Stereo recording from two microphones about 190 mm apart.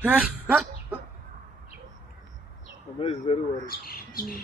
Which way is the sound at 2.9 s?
30° left (ahead or behind).